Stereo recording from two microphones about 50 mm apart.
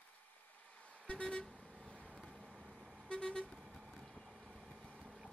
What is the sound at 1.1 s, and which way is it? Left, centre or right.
Vehicle, left.